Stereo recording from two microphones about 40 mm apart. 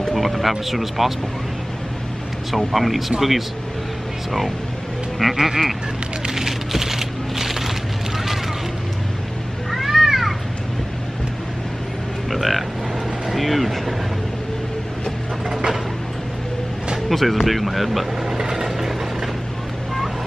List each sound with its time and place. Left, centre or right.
0.1 s speech: centre
2.5 s speech: centre
5.2 s music: centre
6.2 s a sound: centre
9.7 s cat: centre
12.3 s a sound: centre
13.3 s vehicle: centre
17.1 s vehicle: centre